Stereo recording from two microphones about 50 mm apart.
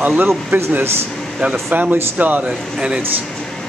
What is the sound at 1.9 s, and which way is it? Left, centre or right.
Speech, right.